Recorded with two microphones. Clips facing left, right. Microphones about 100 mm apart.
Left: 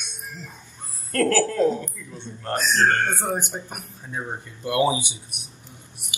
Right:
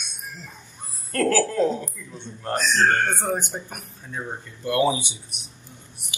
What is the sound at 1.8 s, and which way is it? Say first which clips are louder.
Speech: left 1 dB; 15° left (ahead or behind).